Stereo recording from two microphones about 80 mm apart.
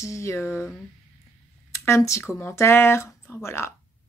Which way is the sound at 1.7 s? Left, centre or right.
Left.